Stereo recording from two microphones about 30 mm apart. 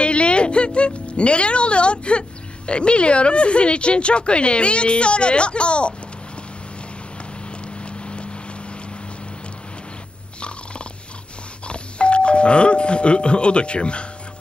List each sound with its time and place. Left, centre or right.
0.0 s speech: left
7.8 s boat: left
11.6 s speech: left